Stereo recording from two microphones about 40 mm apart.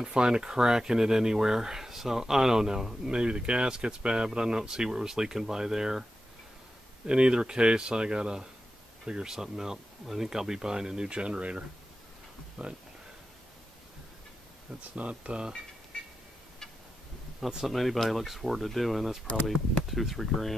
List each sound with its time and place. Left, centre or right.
0.0 s speech: centre
7.1 s speech: right
15.0 s speech: right
17.6 s speech: centre